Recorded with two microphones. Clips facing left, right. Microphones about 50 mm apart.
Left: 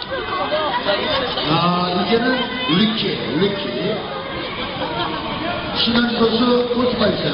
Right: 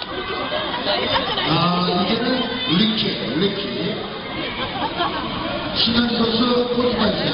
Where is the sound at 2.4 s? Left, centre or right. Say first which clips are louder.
Left 2 dB; left.